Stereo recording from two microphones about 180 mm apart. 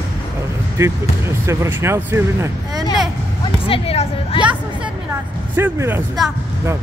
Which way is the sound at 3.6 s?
30° left (ahead or behind).